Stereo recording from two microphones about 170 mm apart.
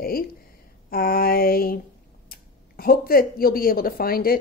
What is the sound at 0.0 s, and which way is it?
Speech, 60° left (ahead or behind).